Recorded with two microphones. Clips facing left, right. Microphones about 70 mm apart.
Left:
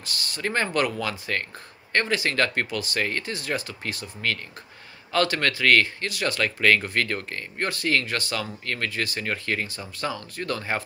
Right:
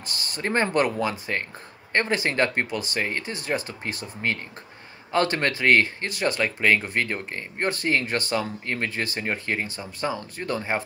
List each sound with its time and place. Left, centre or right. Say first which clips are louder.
0.0 s speech: even; right